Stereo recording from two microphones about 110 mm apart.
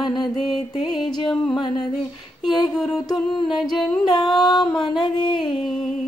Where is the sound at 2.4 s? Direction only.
40° left (ahead or behind).